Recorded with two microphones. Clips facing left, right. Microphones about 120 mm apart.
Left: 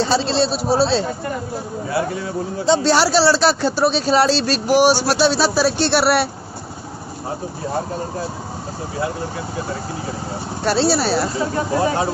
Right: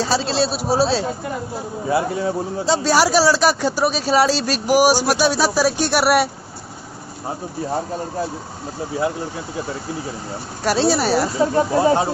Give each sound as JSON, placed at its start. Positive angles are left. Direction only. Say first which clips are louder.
{"t": 0.0, "sound": "speech", "louder": "left 2 dB", "side_deg": -10}
{"t": 1.9, "sound": "speech", "louder": "right 3 dB", "side_deg": -25}
{"t": 2.6, "sound": "speech", "louder": "left 2 dB", "side_deg": -10}
{"t": 10.6, "sound": "speech", "louder": "even", "side_deg": -10}
{"t": 11.5, "sound": "speech", "louder": "right 3 dB", "side_deg": -25}